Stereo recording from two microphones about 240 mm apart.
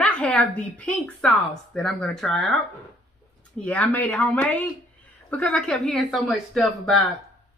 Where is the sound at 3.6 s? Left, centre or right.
Centre.